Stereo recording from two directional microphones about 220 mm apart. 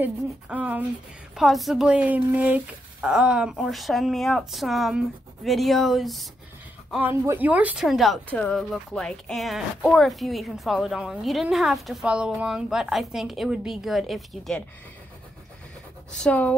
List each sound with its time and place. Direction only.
0.0 s speech: 5° right (ahead or behind)
16.1 s speech: 5° left (ahead or behind)